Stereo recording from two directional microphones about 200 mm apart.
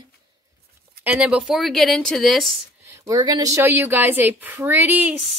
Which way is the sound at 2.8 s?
20° right (ahead or behind).